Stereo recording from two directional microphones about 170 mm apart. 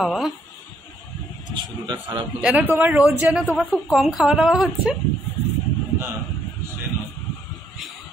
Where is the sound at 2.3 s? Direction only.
5° right (ahead or behind).